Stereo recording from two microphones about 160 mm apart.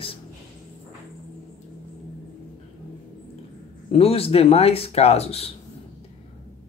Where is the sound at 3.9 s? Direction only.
40° left (ahead or behind).